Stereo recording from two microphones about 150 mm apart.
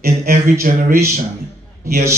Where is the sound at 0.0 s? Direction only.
85° right.